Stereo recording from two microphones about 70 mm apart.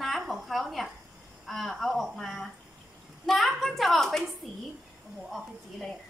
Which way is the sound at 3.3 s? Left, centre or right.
Centre.